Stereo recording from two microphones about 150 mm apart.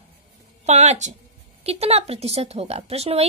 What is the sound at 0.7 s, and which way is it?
Speech, 50° right (ahead or behind).